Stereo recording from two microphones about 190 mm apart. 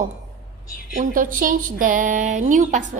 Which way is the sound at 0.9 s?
45° right (ahead or behind).